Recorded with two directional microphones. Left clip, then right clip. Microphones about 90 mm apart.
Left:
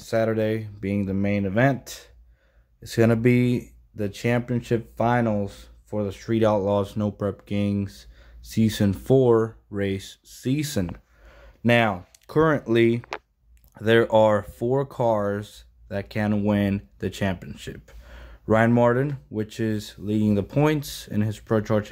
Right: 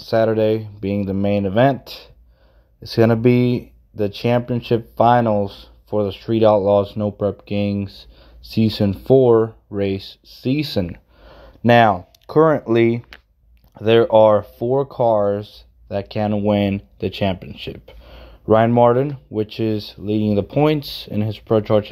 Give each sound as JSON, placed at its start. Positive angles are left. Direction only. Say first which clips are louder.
{"t": 0.1, "sound": "speech", "louder": "right 7 dB", "side_deg": -10}
{"t": 1.9, "sound": "speech", "louder": "right 5 dB", "side_deg": 50}
{"t": 2.9, "sound": "speech", "louder": "right 5 dB", "side_deg": -10}
{"t": 5.6, "sound": "a sound", "louder": "right 9 dB", "side_deg": -15}
{"t": 6.2, "sound": "speech", "louder": "right 7 dB", "side_deg": 0}
{"t": 8.4, "sound": "speech", "louder": "right 5 dB", "side_deg": 50}
{"t": 8.6, "sound": "speech", "louder": "right 6 dB", "side_deg": 0}
{"t": 11.2, "sound": "a sound", "louder": "right 7 dB", "side_deg": -35}
{"t": 12.3, "sound": "speech", "louder": "right 6 dB", "side_deg": 5}
{"t": 17.7, "sound": "a sound", "louder": "right 6 dB", "side_deg": -20}
{"t": 18.8, "sound": "speech", "louder": "right 7 dB", "side_deg": -15}